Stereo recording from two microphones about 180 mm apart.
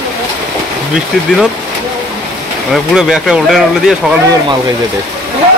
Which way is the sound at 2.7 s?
Centre (ahead or behind).